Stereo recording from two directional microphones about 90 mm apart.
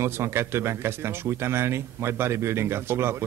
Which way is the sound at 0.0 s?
30° right (ahead or behind).